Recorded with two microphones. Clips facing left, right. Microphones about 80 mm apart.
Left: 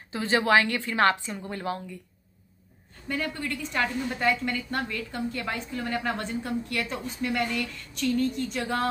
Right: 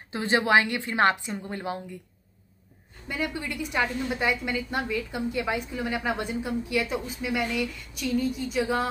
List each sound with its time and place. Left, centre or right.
0.1 s a woman's voice: right
3.1 s a woman's voice: centre